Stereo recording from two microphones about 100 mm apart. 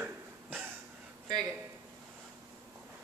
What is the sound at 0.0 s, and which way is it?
Cough, 15° right (ahead or behind).